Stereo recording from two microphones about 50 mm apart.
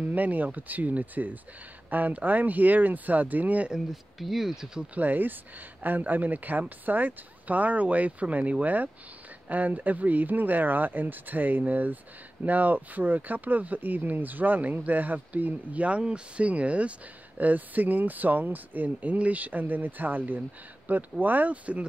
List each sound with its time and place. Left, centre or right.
0.0 s speech: right
3.7 s speech: centre
4.9 s speech: right